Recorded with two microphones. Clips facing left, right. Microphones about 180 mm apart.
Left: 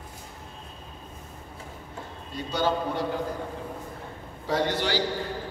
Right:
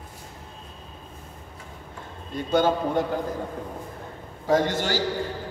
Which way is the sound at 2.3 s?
50° right (ahead or behind).